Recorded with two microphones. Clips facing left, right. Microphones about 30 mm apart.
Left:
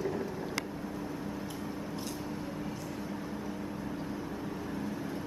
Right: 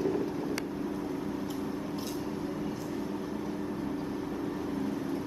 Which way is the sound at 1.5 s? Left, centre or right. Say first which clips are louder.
Right 4 dB; centre.